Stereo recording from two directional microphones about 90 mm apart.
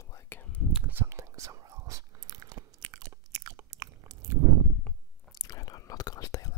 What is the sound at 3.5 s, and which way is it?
Biting, 45° right (ahead or behind).